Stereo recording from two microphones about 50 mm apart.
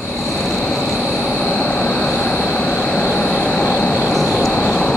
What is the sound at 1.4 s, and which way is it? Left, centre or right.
Vehicle, centre.